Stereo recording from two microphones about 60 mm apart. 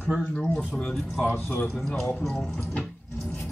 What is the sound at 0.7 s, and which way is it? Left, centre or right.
Speech, centre.